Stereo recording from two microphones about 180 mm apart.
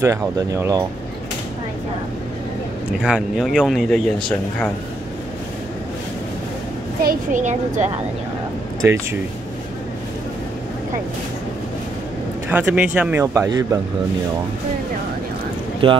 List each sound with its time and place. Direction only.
0.0 s speech: 15° right (ahead or behind)
3.0 s speech: 5° right (ahead or behind)
7.0 s a woman's voice: 50° right (ahead or behind)
12.4 s speech: 10° right (ahead or behind)
15.8 s speech: 30° right (ahead or behind)